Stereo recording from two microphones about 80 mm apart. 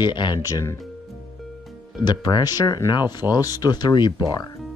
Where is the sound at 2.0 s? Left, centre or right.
Left.